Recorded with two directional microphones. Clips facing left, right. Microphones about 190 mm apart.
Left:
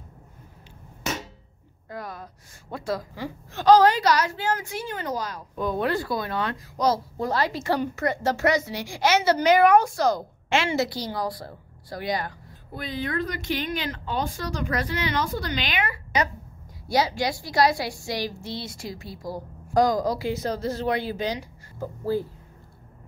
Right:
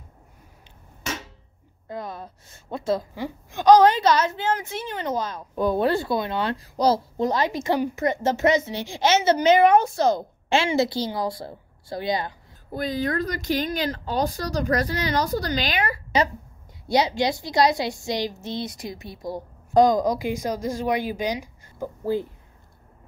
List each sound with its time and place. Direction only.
1.9 s a woman's voice: 25° right (ahead or behind)
7.2 s a woman's voice: 20° right (ahead or behind)
12.7 s speech: 40° right (ahead or behind)
16.8 s a woman's voice: 20° right (ahead or behind)